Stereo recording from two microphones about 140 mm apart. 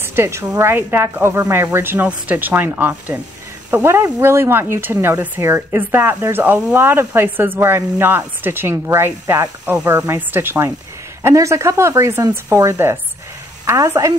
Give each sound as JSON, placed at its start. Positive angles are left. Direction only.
{"t": 0.0, "sound": "a woman's voice", "side_deg": -15}